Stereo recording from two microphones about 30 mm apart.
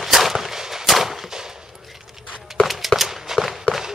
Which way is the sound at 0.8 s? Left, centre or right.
Centre.